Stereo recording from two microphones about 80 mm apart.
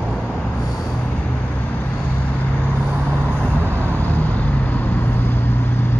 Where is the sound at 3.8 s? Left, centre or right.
Left.